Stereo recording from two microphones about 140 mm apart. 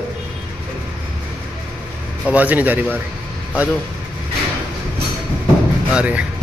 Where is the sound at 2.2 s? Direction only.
10° right (ahead or behind).